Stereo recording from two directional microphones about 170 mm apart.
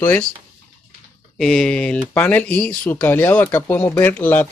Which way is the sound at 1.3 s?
Centre (ahead or behind).